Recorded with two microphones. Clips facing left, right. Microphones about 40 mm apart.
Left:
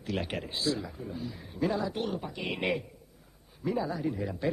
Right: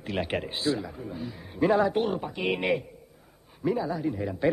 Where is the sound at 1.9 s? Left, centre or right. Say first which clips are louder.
Right 6 dB; centre.